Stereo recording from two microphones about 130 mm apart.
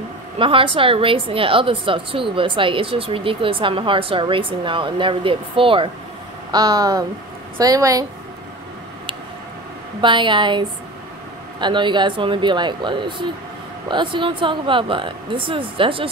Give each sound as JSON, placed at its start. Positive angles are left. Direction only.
{"t": 0.4, "sound": "a woman's voice", "side_deg": -45}
{"t": 6.5, "sound": "speech", "side_deg": -30}
{"t": 10.0, "sound": "speech", "side_deg": -40}
{"t": 11.6, "sound": "speech", "side_deg": -35}